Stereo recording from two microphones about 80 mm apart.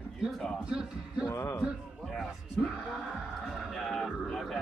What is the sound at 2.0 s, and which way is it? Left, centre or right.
A man's voice, centre.